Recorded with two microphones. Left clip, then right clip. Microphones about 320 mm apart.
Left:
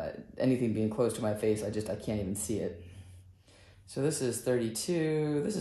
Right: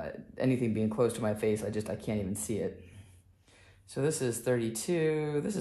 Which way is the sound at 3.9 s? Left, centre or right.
Centre.